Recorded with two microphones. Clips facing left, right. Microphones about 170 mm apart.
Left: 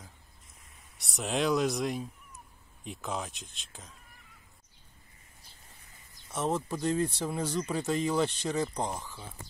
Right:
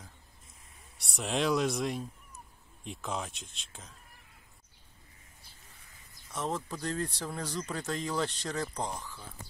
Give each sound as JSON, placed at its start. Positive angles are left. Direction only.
{"t": 0.9, "sound": "speech", "side_deg": 0}
{"t": 6.3, "sound": "speech", "side_deg": 20}